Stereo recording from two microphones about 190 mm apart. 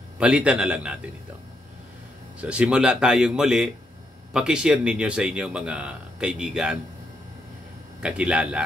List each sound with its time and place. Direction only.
0.2 s speech: 5° right (ahead or behind)
2.4 s speech: 5° right (ahead or behind)
8.0 s speech: 5° right (ahead or behind)